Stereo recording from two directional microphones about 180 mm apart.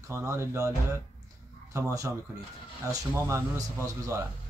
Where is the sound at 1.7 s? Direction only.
15° right (ahead or behind).